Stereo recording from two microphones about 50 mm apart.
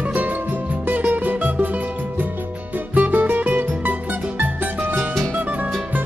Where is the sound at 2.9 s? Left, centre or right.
Right.